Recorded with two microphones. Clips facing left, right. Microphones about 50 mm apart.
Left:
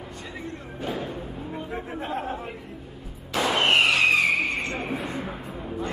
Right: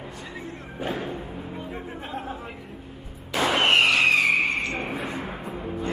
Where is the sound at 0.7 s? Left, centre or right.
Centre.